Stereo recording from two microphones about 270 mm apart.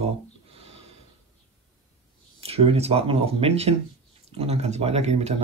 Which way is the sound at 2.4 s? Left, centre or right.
Right.